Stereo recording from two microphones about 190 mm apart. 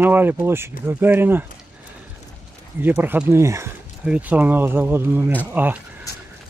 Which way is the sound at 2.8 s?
10° right (ahead or behind).